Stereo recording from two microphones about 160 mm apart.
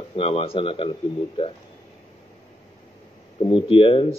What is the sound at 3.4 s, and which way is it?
Speech, 35° left (ahead or behind).